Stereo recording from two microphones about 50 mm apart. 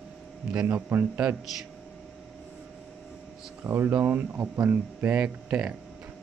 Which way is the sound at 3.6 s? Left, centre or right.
Right.